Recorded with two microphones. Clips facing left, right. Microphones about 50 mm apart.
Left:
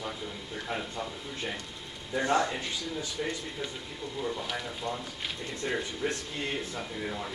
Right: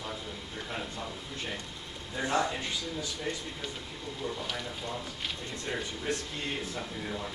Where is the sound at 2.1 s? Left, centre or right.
Centre.